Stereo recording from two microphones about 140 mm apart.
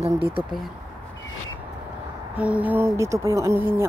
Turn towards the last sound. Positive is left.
turn(degrees=-15)  # may be behind; listen again after turning